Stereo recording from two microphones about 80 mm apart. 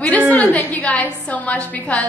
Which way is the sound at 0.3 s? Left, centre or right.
Centre.